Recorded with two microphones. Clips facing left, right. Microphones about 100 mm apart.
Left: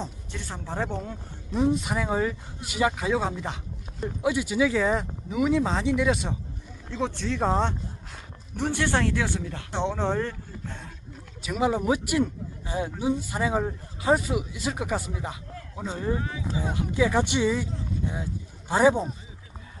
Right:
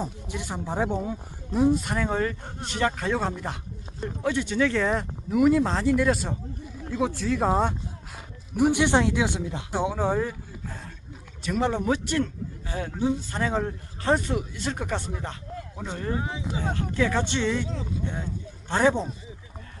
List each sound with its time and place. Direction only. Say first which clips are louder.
0.0 s speech: right 3 dB; 10° right (ahead or behind)
9.7 s speech: right 1 dB; 5° right (ahead or behind)
11.4 s a man's voice: even; 5° left (ahead or behind)
16.2 s speech: right 1 dB; 20° right (ahead or behind)
16.7 s a man's voice: left 2 dB; 10° left (ahead or behind)
18.7 s a man's voice: left 2 dB; 10° left (ahead or behind)